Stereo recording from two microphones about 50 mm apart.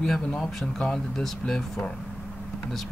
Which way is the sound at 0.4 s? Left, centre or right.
Centre.